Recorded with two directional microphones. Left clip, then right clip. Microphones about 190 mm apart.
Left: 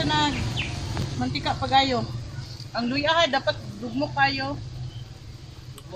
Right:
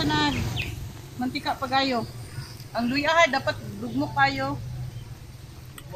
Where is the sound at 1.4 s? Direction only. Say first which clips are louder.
Left 3 dB; 20° left (ahead or behind).